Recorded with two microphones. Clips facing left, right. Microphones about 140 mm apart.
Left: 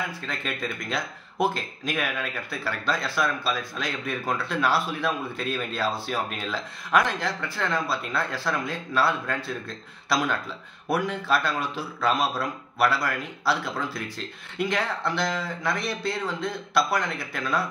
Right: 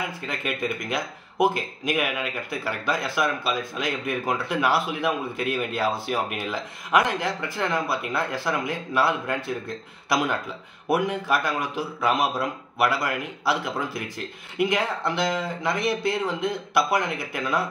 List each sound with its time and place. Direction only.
0.3 s speech: 15° right (ahead or behind)